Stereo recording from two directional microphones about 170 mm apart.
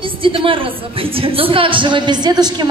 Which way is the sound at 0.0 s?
30° right (ahead or behind).